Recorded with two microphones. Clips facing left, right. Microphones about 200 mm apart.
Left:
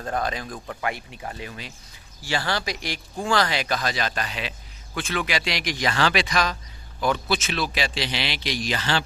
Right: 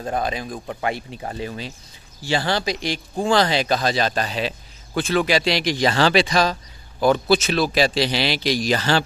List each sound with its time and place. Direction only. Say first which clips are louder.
0.0 s a man's voice: right 3 dB; 20° right (ahead or behind)
0.7 s speech: right 4 dB; 30° right (ahead or behind)